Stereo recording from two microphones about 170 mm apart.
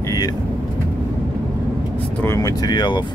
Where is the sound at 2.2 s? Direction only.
20° left (ahead or behind).